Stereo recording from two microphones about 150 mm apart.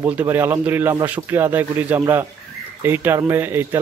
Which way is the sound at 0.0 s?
15° right (ahead or behind).